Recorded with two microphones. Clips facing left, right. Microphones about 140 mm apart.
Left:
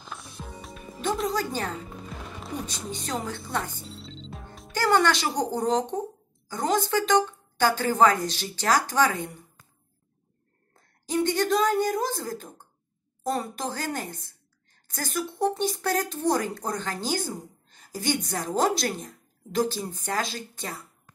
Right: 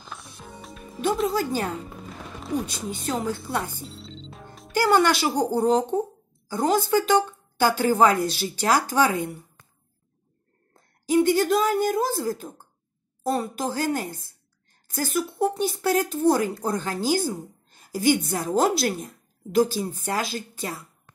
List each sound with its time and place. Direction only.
0.0 s music: centre (ahead or behind)
2.4 s speech: 5° right (ahead or behind)
3.8 s music: centre (ahead or behind)
4.7 s speech: 10° right (ahead or behind)
11.1 s speech: 5° right (ahead or behind)